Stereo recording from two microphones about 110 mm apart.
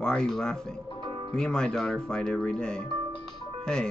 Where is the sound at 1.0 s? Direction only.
55° right (ahead or behind).